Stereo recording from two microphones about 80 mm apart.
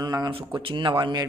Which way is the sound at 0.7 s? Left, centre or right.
Right.